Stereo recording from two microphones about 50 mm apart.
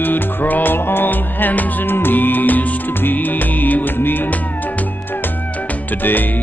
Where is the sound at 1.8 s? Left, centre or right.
Left.